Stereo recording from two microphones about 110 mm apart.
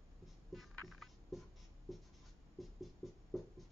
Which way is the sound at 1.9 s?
Centre (ahead or behind).